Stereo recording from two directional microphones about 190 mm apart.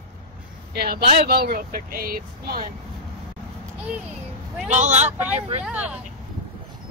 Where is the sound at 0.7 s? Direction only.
55° right (ahead or behind).